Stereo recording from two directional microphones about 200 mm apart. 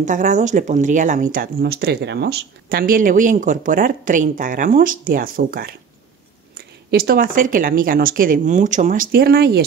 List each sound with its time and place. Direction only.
0.0 s speech: 40° right (ahead or behind)